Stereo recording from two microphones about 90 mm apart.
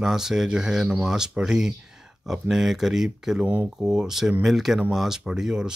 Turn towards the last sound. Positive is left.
turn(degrees=-5)  # may be behind; listen again after turning